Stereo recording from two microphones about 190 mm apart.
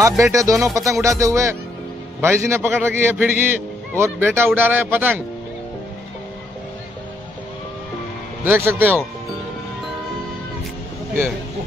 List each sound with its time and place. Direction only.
0.2 s a man's voice: 15° right (ahead or behind)
8.5 s a man's voice: 10° right (ahead or behind)